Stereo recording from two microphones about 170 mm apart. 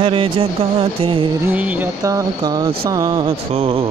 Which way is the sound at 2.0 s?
20° right (ahead or behind).